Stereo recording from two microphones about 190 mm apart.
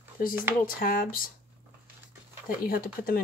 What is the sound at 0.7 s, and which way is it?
Speech, 50° left (ahead or behind).